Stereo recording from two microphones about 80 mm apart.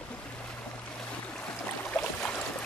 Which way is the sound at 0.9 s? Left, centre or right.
Centre.